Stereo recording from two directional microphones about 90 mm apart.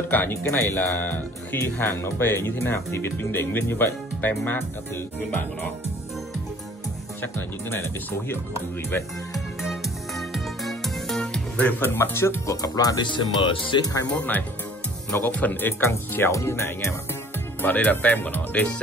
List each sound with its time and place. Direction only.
0.1 s speech: 20° left (ahead or behind)
7.2 s speech: 25° left (ahead or behind)
9.3 s music: centre (ahead or behind)
11.8 s speech: 25° left (ahead or behind); by 13.1 s 45° left (ahead or behind)
13.1 s speech: 65° left (ahead or behind)
14.1 s speech: 20° left (ahead or behind)
17.6 s speech: 20° left (ahead or behind)